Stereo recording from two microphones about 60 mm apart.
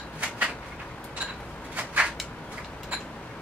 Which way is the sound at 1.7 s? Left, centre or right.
Right.